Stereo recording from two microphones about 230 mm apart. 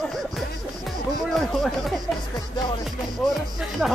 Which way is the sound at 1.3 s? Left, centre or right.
Centre.